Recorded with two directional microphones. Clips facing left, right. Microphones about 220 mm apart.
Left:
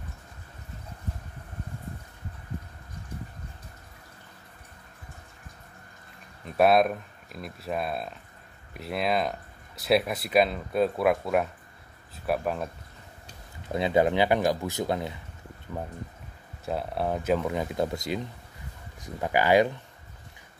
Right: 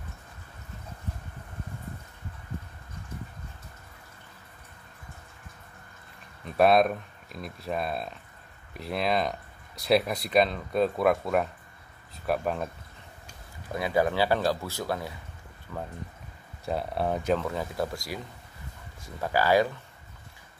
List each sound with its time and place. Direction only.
6.4 s speech: centre (ahead or behind)
13.3 s speech: 25° left (ahead or behind)
16.6 s speech: centre (ahead or behind); by 19.7 s 20° left (ahead or behind)